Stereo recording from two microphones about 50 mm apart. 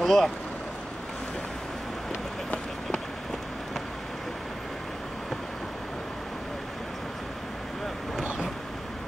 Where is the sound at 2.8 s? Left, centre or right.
Centre.